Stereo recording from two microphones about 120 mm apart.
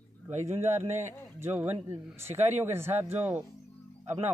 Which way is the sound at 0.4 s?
70° right (ahead or behind).